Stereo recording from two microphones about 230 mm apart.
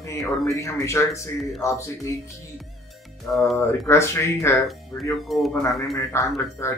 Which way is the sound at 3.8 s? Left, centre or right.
Centre.